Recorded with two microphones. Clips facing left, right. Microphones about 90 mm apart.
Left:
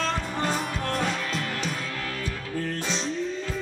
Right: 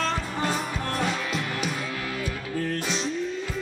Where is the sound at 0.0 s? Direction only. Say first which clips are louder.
Even; centre (ahead or behind).